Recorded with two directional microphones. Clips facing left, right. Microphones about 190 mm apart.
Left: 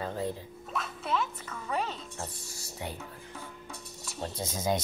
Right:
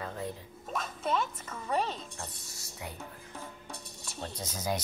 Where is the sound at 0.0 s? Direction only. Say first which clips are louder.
Left 4 dB; 30° left (ahead or behind).